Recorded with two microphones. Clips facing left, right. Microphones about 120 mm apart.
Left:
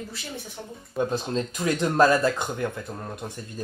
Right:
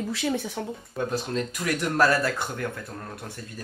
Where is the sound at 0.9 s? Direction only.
25° left (ahead or behind).